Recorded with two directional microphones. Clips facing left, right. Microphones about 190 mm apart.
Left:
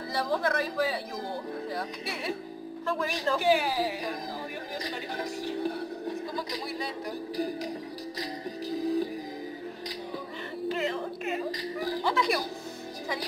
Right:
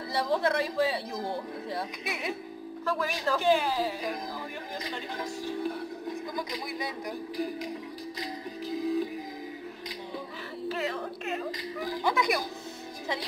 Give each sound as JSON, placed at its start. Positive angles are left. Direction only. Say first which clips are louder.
{"t": 0.1, "sound": "speech", "louder": "right 1 dB", "side_deg": -25}
{"t": 2.9, "sound": "a man's voice", "louder": "even", "side_deg": 0}
{"t": 3.3, "sound": "a woman's voice", "louder": "even", "side_deg": 10}
{"t": 4.8, "sound": "a sound", "louder": "left 1 dB", "side_deg": 35}
{"t": 8.2, "sound": "music", "louder": "left 2 dB", "side_deg": 35}
{"t": 10.7, "sound": "music", "louder": "left 2 dB", "side_deg": 0}
{"t": 11.5, "sound": "speech", "louder": "left 2 dB", "side_deg": 35}
{"t": 12.0, "sound": "speech", "louder": "right 1 dB", "side_deg": -15}